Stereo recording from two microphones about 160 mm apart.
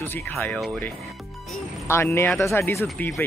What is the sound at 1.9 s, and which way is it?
Speech, 15° left (ahead or behind).